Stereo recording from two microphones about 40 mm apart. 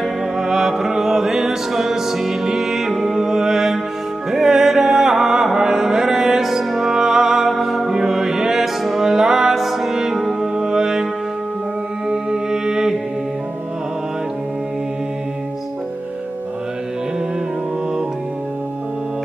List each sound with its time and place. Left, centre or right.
0.4 s music: centre
3.2 s music: centre
6.9 s music: centre
9.9 s music: centre
12.1 s music: centre